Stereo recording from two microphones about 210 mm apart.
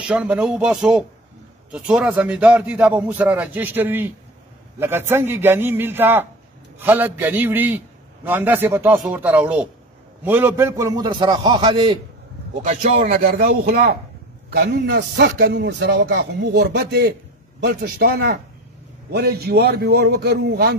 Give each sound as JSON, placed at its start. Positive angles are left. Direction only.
{"t": 0.1, "sound": "a man's voice", "side_deg": -5}
{"t": 12.6, "sound": "a man's voice", "side_deg": -40}